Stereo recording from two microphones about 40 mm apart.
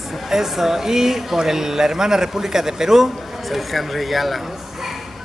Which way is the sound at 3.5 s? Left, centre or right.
Centre.